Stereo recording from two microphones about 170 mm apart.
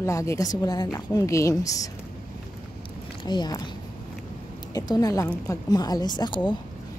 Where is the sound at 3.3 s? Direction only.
25° left (ahead or behind).